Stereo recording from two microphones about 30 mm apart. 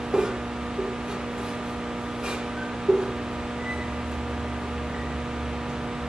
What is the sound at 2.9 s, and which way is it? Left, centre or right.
Music, centre.